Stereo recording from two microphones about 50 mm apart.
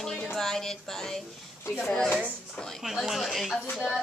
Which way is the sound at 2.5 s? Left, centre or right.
Centre.